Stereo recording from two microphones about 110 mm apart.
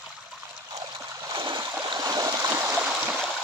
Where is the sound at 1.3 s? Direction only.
45° right (ahead or behind); by 3.2 s 15° right (ahead or behind).